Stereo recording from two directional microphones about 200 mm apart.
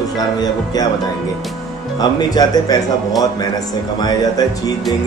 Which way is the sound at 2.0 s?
20° left (ahead or behind).